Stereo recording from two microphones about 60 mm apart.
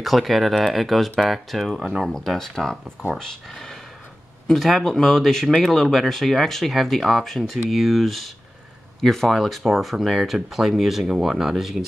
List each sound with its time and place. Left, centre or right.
0.0 s speech: centre